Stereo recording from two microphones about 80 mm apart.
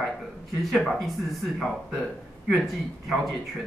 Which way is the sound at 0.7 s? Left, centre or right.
Centre.